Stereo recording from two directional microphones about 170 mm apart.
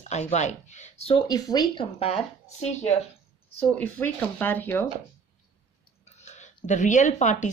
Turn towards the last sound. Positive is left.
turn(degrees=45)  # may be behind; listen again after turning